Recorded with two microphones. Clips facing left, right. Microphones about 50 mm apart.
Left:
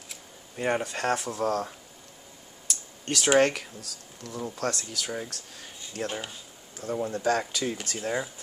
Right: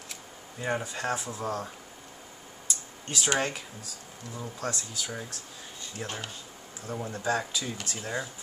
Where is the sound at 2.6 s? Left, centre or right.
Left.